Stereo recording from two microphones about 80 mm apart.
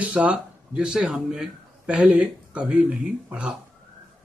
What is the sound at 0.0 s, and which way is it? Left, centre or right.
Speech, centre.